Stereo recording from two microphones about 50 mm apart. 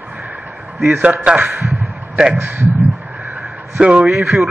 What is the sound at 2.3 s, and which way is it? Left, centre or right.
Speech, right.